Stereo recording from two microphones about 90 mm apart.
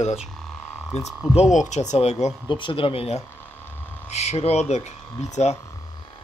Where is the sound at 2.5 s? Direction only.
70° left (ahead or behind).